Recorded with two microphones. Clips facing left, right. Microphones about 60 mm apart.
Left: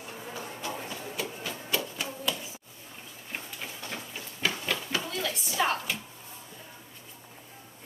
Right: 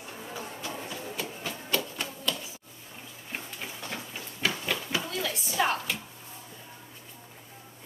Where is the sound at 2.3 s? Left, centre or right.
Centre.